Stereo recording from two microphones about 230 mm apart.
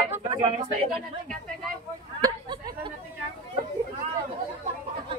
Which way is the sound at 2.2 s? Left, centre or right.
Centre.